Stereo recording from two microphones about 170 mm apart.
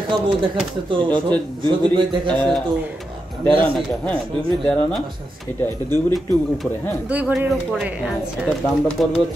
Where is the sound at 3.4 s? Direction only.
5° left (ahead or behind).